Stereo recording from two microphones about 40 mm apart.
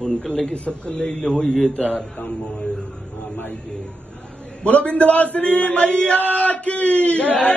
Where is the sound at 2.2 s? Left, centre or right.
Left.